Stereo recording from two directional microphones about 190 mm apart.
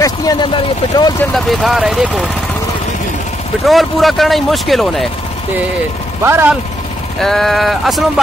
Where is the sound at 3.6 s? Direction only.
Centre (ahead or behind).